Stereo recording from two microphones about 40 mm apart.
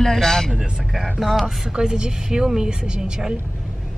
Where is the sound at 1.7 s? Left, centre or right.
Right.